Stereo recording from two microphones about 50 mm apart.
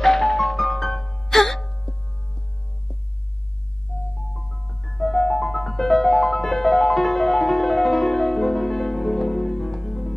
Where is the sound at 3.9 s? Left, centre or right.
Left.